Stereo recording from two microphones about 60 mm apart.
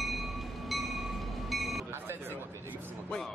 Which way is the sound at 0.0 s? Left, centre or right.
Centre.